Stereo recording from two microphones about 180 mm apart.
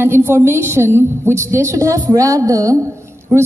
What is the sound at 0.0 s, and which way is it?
A woman's voice, 15° right (ahead or behind).